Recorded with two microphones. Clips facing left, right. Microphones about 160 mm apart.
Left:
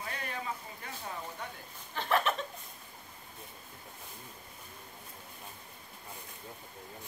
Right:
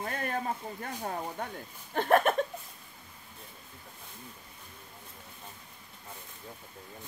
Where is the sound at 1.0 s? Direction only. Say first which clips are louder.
Right 6 dB; 50° right (ahead or behind).